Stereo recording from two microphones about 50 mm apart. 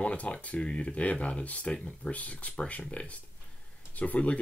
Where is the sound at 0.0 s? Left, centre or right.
Left.